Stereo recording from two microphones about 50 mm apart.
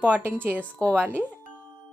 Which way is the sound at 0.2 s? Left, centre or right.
Right.